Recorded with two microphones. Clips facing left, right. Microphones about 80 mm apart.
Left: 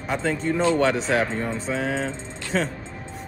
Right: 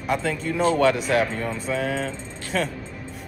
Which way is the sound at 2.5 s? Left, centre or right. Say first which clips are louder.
Left 1 dB; centre.